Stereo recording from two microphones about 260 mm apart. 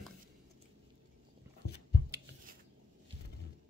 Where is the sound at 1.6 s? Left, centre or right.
Left.